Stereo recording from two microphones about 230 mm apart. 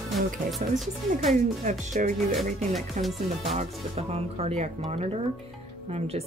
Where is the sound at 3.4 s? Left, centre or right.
Right.